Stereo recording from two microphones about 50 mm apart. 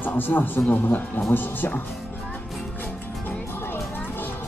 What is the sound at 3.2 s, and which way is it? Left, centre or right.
Music, left.